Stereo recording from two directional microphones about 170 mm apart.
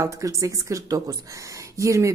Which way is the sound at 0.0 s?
20° right (ahead or behind).